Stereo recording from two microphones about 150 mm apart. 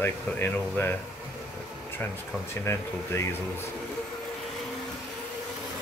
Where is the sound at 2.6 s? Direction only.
20° left (ahead or behind).